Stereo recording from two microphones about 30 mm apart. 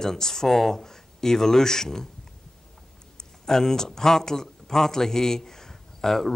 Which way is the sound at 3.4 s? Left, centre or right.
Centre.